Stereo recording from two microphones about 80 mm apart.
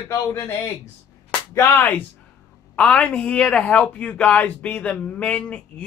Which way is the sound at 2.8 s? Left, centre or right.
Centre.